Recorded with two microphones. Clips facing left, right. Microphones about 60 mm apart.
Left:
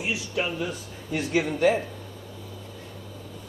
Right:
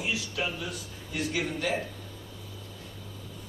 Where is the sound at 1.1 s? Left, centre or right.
Left.